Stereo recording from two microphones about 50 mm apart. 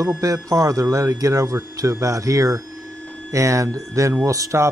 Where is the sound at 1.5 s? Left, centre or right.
Right.